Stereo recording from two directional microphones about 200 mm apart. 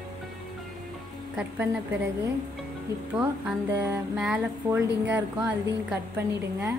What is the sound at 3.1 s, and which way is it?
Speech, 5° right (ahead or behind).